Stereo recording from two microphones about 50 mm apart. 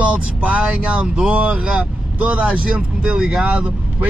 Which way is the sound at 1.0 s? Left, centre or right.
Centre.